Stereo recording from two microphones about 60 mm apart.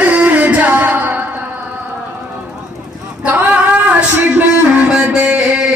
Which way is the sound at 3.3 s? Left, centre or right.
Right.